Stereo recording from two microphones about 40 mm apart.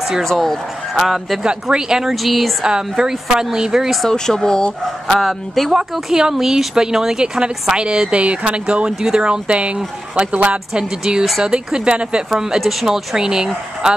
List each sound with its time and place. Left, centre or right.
0.2 s speech: centre
1.0 s speech: centre
1.4 s speech: right
2.2 s speech: centre
2.6 s speech: centre
4.1 s speech: centre
5.1 s speech: centre
5.7 s speech: centre; by 10.6 s right
10.7 s speech: right